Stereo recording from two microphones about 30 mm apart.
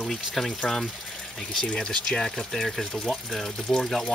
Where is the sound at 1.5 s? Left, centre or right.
Left.